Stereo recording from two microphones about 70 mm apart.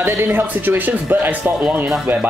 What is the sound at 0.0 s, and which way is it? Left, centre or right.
Speech, right.